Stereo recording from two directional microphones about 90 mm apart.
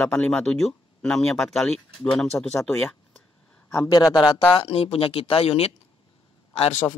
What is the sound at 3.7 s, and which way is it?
Speech, 40° left (ahead or behind).